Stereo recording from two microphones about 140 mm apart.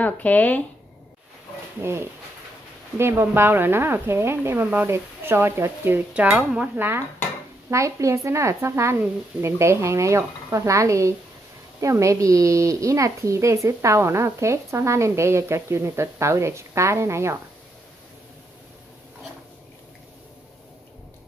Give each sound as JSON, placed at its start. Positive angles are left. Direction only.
{"t": 0.0, "sound": "speech", "side_deg": 10}
{"t": 1.8, "sound": "speech", "side_deg": -20}